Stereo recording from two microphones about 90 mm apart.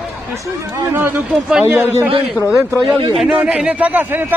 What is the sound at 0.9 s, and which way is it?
A man's voice, 25° right (ahead or behind).